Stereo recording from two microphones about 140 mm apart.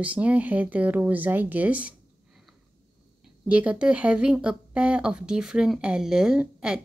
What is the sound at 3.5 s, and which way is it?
A woman's voice, 10° right (ahead or behind).